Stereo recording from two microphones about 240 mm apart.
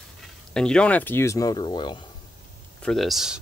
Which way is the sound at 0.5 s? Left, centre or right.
Centre.